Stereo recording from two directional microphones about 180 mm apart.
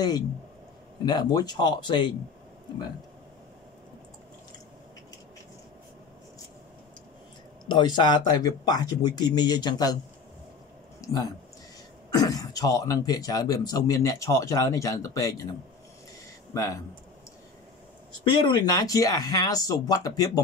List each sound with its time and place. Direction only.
1.0 s speech: 25° left (ahead or behind)
7.6 s speech: 25° left (ahead or behind)
11.0 s a sound: 20° left (ahead or behind)
12.1 s speech: 20° left (ahead or behind)
16.5 s speech: 20° left (ahead or behind)
18.2 s speech: 25° left (ahead or behind)